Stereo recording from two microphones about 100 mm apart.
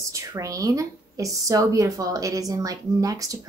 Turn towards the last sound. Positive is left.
turn(degrees=-35)  # may be behind; listen again after turning